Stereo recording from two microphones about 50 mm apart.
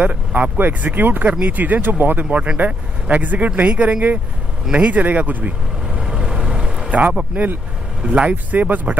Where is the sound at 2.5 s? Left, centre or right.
Right.